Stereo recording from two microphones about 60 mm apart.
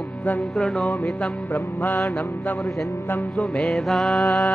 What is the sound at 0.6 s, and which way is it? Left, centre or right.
Music, centre.